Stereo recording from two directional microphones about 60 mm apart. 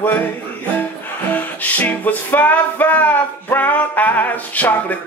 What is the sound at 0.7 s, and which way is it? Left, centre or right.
Music, left.